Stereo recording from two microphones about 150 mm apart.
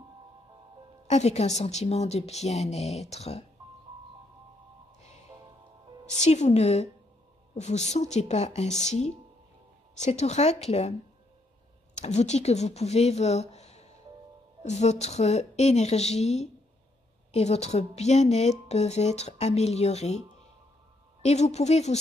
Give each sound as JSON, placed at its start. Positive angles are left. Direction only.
{"t": 1.0, "sound": "speech", "side_deg": 50}
{"t": 6.0, "sound": "speech", "side_deg": 50}
{"t": 21.2, "sound": "speech", "side_deg": 45}